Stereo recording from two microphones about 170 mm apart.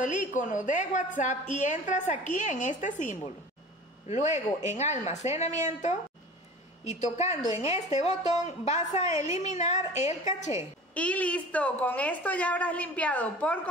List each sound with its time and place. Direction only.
0.0 s a woman's voice: 50° left (ahead or behind)
11.0 s a woman's voice: 10° left (ahead or behind)